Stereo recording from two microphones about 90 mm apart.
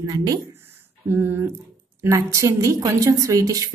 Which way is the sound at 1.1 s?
25° right (ahead or behind).